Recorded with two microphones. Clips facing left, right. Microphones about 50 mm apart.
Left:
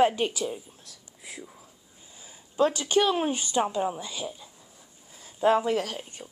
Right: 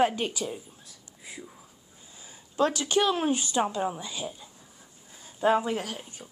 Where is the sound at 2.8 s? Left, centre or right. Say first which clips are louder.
Left 1 dB; left.